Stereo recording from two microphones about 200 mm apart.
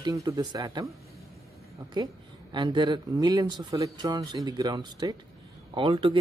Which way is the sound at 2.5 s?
20° right (ahead or behind).